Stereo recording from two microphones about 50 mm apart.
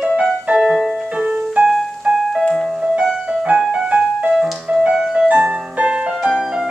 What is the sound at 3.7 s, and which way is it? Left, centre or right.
Music, centre.